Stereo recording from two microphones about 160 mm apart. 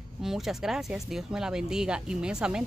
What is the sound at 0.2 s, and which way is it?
Speech, centre (ahead or behind).